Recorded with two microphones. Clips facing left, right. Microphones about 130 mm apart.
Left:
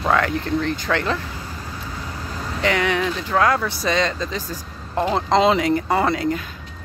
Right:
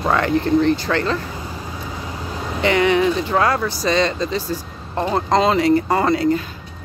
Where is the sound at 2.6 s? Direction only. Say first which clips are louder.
Right 5 dB; centre (ahead or behind).